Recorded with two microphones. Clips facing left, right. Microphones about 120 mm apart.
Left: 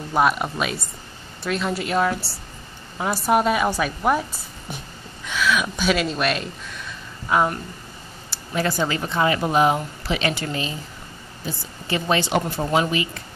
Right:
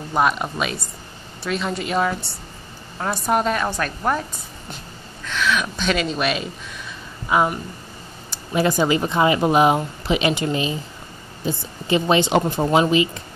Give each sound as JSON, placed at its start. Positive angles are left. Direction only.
{"t": 0.1, "sound": "a woman's voice", "side_deg": 0}
{"t": 8.3, "sound": "speech", "side_deg": -20}